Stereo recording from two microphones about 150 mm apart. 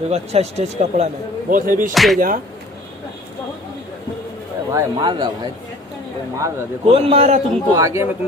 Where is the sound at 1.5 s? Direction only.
65° right (ahead or behind).